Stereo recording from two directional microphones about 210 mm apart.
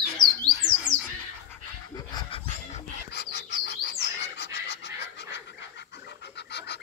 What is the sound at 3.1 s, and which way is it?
Chirp, 55° left (ahead or behind).